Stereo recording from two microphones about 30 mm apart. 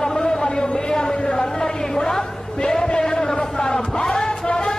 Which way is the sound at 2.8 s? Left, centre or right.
Left.